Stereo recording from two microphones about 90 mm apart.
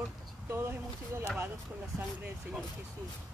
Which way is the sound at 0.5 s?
25° right (ahead or behind).